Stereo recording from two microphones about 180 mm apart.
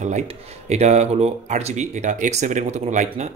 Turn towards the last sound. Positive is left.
turn(degrees=-40)  # may be behind; listen again after turning